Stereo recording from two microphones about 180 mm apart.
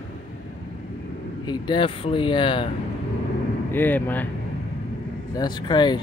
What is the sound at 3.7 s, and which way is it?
Speech, 10° left (ahead or behind).